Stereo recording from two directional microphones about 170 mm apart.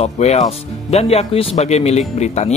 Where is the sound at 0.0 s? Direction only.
40° left (ahead or behind).